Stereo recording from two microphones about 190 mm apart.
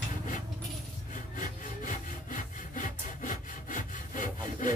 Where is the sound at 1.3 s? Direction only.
45° left (ahead or behind).